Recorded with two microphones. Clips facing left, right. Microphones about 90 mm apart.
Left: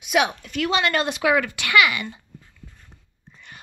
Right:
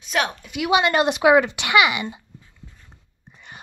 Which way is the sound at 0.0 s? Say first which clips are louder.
Left 3 dB; 10° left (ahead or behind).